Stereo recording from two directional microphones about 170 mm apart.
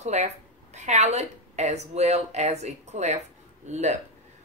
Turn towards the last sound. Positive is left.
turn(degrees=-45)  # may be behind; listen again after turning